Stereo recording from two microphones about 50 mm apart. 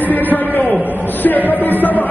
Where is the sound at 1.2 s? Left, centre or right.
Left.